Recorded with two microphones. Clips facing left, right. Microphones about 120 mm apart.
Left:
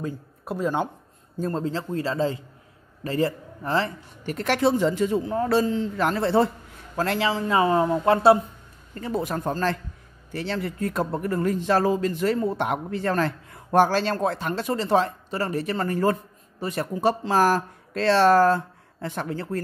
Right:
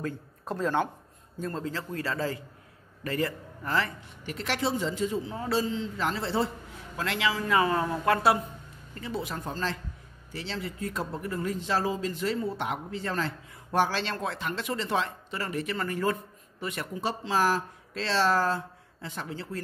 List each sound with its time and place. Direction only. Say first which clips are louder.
0.0 s speech: left 3 dB; 15° left (ahead or behind)
1.4 s a man's voice: left 6 dB; 30° left (ahead or behind)
4.3 s a man's voice: left 8 dB; 50° left (ahead or behind)
7.0 s speech: left 5 dB; 40° left (ahead or behind)
8.9 s speech: left 7 dB; 45° left (ahead or behind)